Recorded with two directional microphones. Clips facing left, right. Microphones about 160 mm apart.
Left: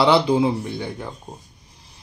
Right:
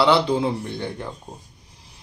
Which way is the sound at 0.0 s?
10° left (ahead or behind).